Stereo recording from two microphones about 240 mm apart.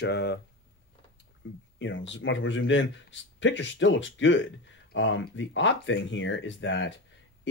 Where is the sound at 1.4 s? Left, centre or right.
Left.